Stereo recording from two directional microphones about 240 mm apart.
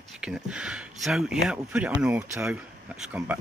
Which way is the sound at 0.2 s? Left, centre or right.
Centre.